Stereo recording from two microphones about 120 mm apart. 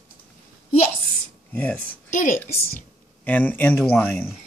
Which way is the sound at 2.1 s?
90° left.